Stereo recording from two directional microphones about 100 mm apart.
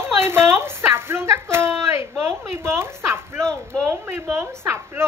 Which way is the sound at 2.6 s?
25° right (ahead or behind).